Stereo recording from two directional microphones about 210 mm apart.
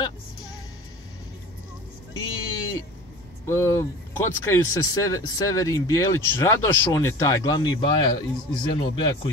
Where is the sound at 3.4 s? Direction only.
10° left (ahead or behind).